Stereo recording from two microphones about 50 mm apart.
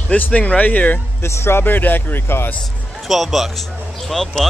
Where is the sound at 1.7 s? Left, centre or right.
Left.